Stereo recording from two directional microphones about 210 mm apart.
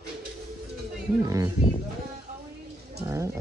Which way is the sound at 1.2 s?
15° right (ahead or behind).